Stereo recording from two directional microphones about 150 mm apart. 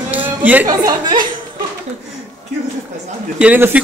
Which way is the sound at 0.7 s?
25° right (ahead or behind).